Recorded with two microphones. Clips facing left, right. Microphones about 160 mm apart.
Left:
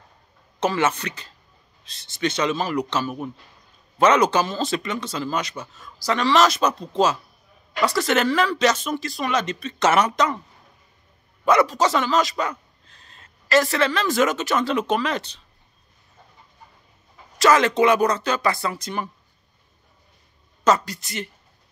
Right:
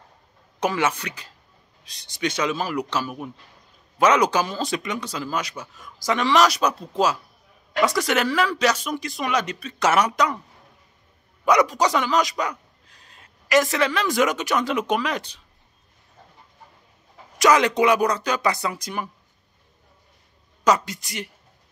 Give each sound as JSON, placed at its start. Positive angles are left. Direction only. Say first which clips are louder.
{"t": 0.6, "sound": "speech", "louder": "left 1 dB", "side_deg": -10}
{"t": 11.4, "sound": "speech", "louder": "left 1 dB", "side_deg": -15}
{"t": 17.4, "sound": "speech", "louder": "left 1 dB", "side_deg": -15}
{"t": 20.6, "sound": "speech", "louder": "left 1 dB", "side_deg": -15}